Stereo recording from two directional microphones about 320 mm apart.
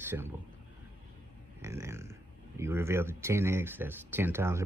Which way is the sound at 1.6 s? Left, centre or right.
Centre.